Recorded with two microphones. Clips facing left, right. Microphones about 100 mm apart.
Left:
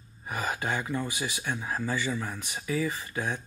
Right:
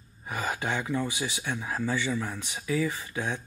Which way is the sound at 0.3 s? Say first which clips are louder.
Even; 20° left (ahead or behind).